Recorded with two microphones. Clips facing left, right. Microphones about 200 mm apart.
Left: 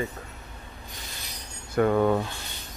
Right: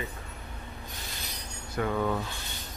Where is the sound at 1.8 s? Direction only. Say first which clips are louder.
Left 7 dB; 50° left (ahead or behind).